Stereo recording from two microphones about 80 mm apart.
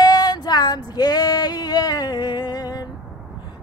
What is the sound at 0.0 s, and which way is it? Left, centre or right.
Female singing, left.